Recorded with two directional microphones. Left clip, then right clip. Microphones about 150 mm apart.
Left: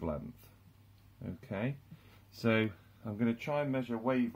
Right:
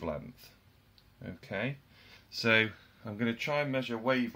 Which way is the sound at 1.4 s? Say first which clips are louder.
Right 4 dB; 40° left (ahead or behind).